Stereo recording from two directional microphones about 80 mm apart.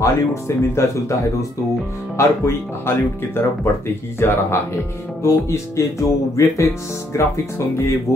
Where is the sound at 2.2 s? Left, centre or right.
Left.